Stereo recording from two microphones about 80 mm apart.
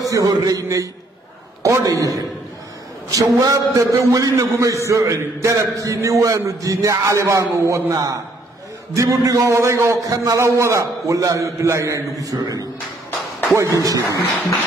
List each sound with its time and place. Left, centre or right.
0.0 s a man's voice: right
3.3 s a man's voice: right